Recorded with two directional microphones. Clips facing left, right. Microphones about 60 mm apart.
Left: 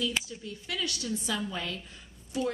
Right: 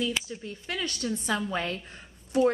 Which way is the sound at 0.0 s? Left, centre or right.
Right.